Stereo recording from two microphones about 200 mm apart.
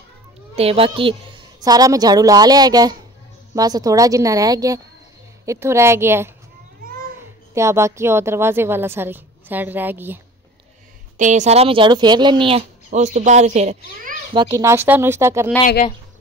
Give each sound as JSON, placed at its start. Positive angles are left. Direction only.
{"t": 0.6, "sound": "a woman's voice", "side_deg": -30}
{"t": 7.5, "sound": "a woman's voice", "side_deg": -15}
{"t": 11.1, "sound": "speech", "side_deg": -35}
{"t": 14.4, "sound": "a woman's voice", "side_deg": -15}